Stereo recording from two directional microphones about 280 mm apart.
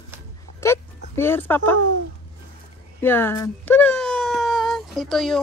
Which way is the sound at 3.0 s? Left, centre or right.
Centre.